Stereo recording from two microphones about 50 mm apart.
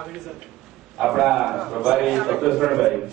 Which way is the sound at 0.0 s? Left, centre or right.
Centre.